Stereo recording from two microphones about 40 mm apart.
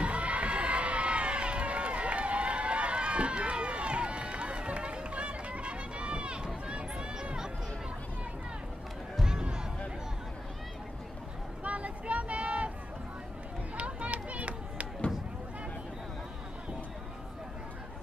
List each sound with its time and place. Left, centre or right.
0.0 s crowd: right
9.2 s music: centre
11.6 s a sound: right
13.7 s run: right